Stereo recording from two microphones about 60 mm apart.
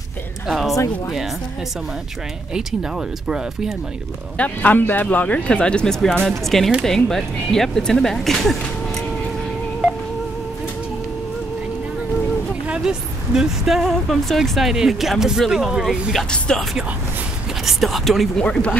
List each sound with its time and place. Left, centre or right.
0.5 s speech: centre
2.5 s speech: centre
4.4 s speech: left; by 8.5 s centre
9.8 s music: centre
12.6 s speech: centre
16.3 s speech: centre
17.6 s speech: centre
18.4 s speech: centre